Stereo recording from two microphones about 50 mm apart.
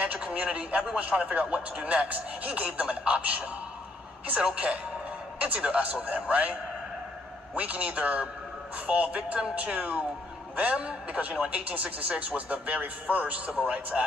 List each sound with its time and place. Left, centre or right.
0.0 s speech: right